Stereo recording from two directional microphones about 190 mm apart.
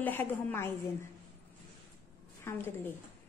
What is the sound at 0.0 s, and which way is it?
Speech, 10° left (ahead or behind).